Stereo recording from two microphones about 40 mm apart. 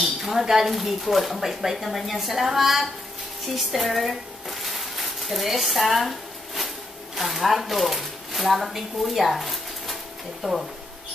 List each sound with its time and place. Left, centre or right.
0.0 s speech: centre
3.5 s a sound: centre
7.2 s speech: centre
10.4 s speech: centre